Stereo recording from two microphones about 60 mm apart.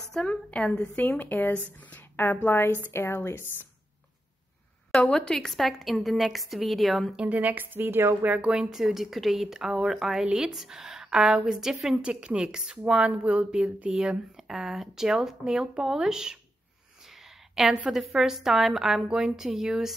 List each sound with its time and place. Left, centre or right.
0.2 s a woman's voice: centre
0.7 s a woman's voice: left
5.1 s a woman's voice: centre
7.2 s a woman's voice: right
8.5 s a woman's voice: centre
12.0 s a woman's voice: centre
17.0 s a sound: centre
17.9 s a woman's voice: centre